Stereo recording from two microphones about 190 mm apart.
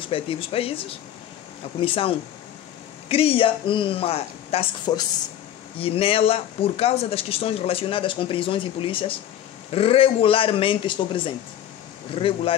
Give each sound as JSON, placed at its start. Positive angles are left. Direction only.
{"t": 0.1, "sound": "speech", "side_deg": 30}